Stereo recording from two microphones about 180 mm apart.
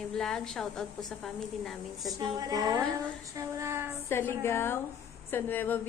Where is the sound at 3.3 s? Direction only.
15° right (ahead or behind).